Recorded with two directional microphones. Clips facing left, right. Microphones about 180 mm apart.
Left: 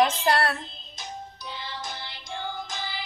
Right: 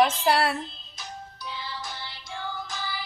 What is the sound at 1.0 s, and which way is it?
Music, 20° left (ahead or behind).